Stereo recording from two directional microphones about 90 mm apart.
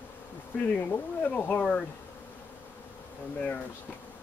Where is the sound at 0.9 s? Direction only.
15° left (ahead or behind).